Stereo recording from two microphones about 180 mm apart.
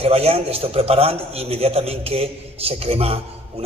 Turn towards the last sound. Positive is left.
turn(degrees=-35)  # may be behind; listen again after turning